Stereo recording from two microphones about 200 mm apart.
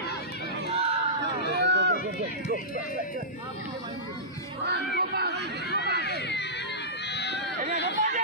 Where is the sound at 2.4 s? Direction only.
45° left (ahead or behind).